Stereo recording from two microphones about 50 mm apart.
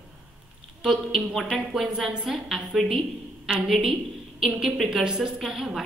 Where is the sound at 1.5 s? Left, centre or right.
Centre.